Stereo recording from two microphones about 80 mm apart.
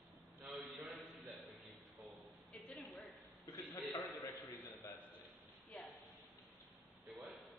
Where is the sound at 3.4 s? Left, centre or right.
Left.